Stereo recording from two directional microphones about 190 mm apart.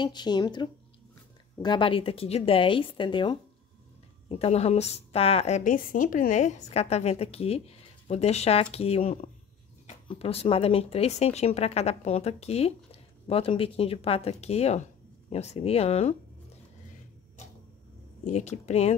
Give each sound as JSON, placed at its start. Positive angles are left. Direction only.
{"t": 0.0, "sound": "a woman's voice", "side_deg": 25}
{"t": 18.2, "sound": "a woman's voice", "side_deg": 35}